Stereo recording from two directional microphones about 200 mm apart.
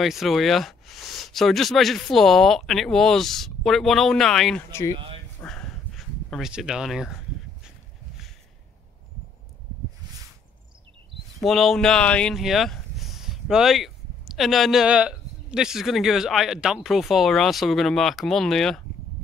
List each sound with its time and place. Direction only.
0.0 s speech: centre (ahead or behind)
4.9 s speech: 25° right (ahead or behind)
5.4 s a sound: 5° left (ahead or behind)
11.4 s speech: centre (ahead or behind)